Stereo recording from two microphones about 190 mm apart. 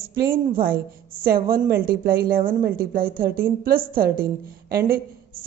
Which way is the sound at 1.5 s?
50° right (ahead or behind).